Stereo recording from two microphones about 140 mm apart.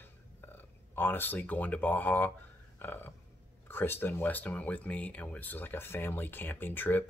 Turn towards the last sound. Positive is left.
turn(degrees=15)  # may be behind; listen again after turning